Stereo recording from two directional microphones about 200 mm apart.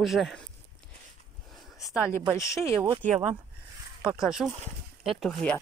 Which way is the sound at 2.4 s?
15° left (ahead or behind).